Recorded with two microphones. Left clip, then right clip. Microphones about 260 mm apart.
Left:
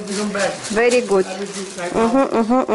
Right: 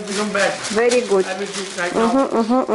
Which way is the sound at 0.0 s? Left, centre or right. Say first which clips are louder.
Right 1 dB; centre.